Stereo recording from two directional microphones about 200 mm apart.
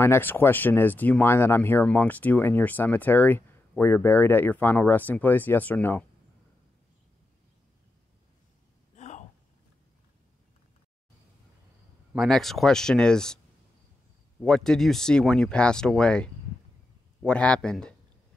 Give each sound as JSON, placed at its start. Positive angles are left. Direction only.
{"t": 0.0, "sound": "speech", "side_deg": 10}
{"t": 8.9, "sound": "a sound", "side_deg": 35}
{"t": 12.1, "sound": "speech", "side_deg": 0}
{"t": 14.4, "sound": "speech", "side_deg": 5}